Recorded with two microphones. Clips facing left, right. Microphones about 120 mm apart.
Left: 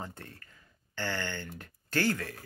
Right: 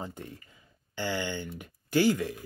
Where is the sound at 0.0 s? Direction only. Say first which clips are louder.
Right 3 dB; 15° right (ahead or behind).